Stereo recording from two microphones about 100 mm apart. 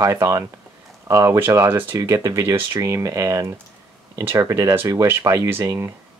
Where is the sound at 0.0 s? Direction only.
30° right (ahead or behind).